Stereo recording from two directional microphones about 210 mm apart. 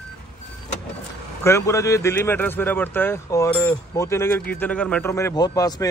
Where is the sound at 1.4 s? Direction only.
15° left (ahead or behind).